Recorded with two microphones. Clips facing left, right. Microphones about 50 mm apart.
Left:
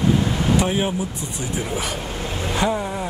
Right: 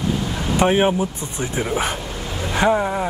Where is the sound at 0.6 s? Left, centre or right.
Right.